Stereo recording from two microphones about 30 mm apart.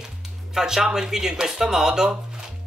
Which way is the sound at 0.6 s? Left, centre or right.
Right.